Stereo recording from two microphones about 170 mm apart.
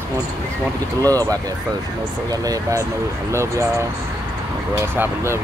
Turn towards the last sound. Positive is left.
turn(degrees=-15)  # may be behind; listen again after turning